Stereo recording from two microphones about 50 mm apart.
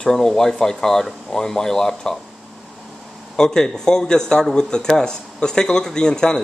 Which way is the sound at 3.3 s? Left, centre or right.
Centre.